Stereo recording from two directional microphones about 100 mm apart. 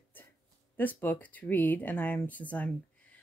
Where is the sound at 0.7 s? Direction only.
15° left (ahead or behind).